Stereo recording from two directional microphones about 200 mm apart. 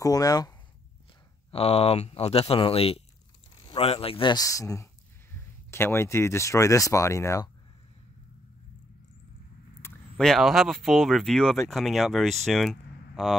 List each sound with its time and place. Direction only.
0.0 s speech: 20° left (ahead or behind)
1.5 s speech: 30° left (ahead or behind); by 7.4 s 15° left (ahead or behind)
9.8 s speech: 10° left (ahead or behind)